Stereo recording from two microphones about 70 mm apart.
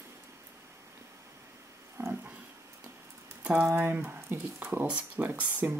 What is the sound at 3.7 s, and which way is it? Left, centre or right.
Speech, right.